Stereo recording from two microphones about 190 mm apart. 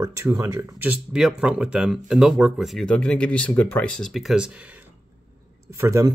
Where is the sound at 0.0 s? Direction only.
15° right (ahead or behind).